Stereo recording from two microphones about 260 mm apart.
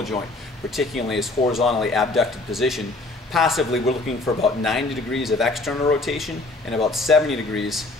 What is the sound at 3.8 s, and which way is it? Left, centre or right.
Speech, left.